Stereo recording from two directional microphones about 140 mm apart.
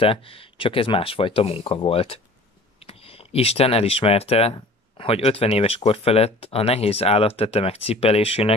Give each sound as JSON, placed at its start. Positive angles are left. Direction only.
{"t": 0.0, "sound": "speech", "side_deg": 40}